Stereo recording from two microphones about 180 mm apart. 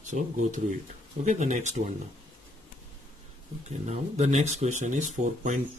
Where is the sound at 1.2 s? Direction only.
40° right (ahead or behind).